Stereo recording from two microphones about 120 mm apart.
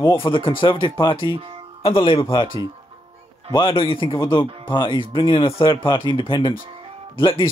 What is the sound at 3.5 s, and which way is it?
Speech, 45° left (ahead or behind).